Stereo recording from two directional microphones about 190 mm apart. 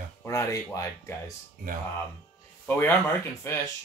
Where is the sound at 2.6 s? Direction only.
10° left (ahead or behind).